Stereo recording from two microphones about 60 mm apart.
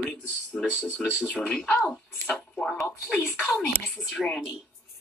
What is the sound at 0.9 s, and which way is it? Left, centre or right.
Speech, centre.